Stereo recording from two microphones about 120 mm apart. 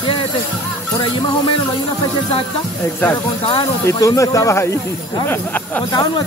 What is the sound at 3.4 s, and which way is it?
Speech, 45° left (ahead or behind).